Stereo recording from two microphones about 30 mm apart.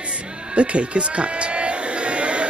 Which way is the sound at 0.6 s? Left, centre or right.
Right.